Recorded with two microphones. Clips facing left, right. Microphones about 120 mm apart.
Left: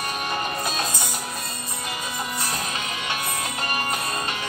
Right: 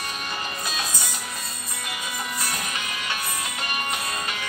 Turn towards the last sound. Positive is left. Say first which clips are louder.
# left 3 dB
turn(degrees=35)  # may be behind; listen again after turning